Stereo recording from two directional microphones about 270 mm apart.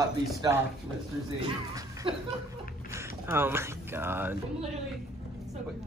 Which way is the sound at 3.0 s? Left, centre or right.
Centre.